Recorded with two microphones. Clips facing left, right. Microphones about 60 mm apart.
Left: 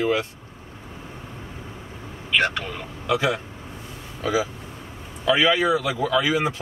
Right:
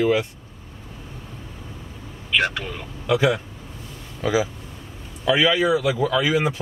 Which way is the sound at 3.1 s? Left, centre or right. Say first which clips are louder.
Right 3 dB; centre.